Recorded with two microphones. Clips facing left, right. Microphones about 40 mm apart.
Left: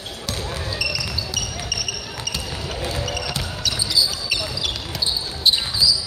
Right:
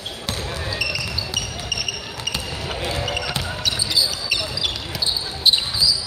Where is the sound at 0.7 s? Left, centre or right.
Centre.